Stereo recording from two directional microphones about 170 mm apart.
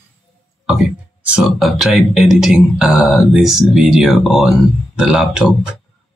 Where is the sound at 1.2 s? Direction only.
5° right (ahead or behind).